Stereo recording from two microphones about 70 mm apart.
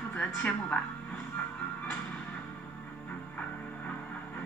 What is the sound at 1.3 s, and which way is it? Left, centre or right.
Music, centre.